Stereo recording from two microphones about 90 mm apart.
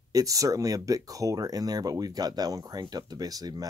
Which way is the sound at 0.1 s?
40° right (ahead or behind).